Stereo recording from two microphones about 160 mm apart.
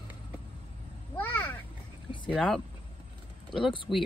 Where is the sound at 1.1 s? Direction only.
10° left (ahead or behind).